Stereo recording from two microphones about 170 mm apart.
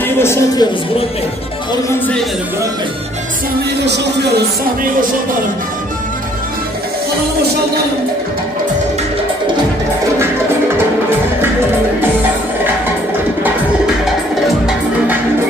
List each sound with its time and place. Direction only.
0.0 s speech: 15° left (ahead or behind)
3.8 s speech: 90° right